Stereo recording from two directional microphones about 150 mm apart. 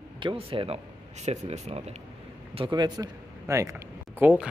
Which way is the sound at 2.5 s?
30° right (ahead or behind).